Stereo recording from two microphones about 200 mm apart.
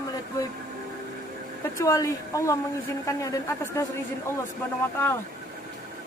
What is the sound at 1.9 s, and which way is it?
Speech, 15° left (ahead or behind).